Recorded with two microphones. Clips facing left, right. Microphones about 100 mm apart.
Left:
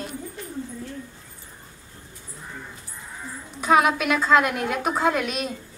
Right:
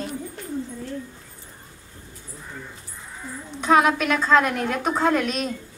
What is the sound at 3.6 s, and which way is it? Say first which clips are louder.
A woman's voice: right 1 dB; 5° left (ahead or behind).